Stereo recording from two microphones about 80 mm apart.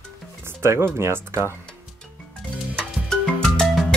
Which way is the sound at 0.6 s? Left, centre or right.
Right.